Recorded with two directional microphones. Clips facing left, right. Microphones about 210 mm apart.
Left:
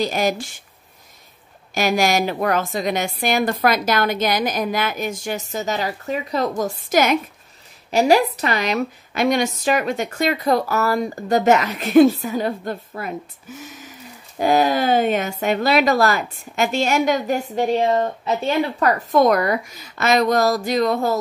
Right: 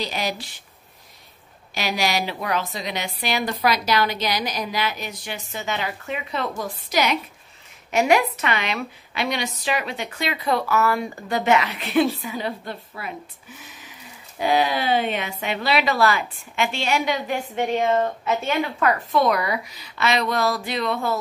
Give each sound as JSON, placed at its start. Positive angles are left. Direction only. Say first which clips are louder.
{"t": 0.0, "sound": "a woman's voice", "louder": "left 7 dB", "side_deg": 45}
{"t": 1.7, "sound": "a woman's voice", "louder": "left 6 dB", "side_deg": 50}
{"t": 7.9, "sound": "a woman's voice", "louder": "left 3 dB", "side_deg": 35}